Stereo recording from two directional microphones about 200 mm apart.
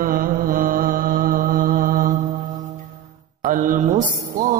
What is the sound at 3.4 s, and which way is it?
Mantra, 40° right (ahead or behind).